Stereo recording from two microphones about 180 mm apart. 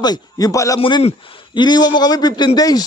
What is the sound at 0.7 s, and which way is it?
A man's voice, 30° left (ahead or behind).